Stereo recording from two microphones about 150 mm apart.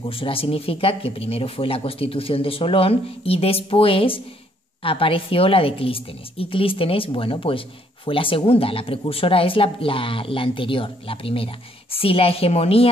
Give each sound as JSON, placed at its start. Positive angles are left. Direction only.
{"t": 0.0, "sound": "a woman's voice", "side_deg": 35}